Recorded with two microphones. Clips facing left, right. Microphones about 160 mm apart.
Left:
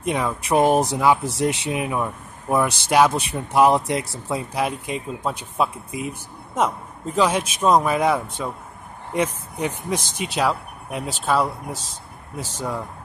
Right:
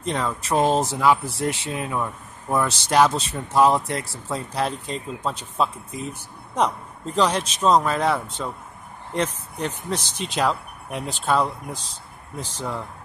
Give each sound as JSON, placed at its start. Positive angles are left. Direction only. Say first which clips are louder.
{"t": 0.0, "sound": "speech", "louder": "left 2 dB", "side_deg": 10}